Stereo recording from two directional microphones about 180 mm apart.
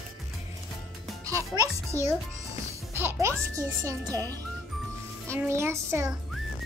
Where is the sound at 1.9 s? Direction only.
15° left (ahead or behind).